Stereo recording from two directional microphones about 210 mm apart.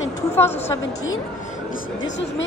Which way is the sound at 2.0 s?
60° left (ahead or behind).